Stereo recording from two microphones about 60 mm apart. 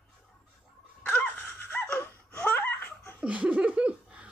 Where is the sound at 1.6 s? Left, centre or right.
Left.